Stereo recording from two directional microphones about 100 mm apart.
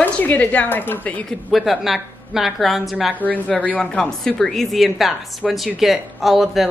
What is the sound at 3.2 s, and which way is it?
A woman's voice, 10° left (ahead or behind).